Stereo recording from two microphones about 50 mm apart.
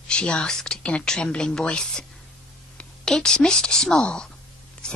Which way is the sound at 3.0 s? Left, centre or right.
Centre.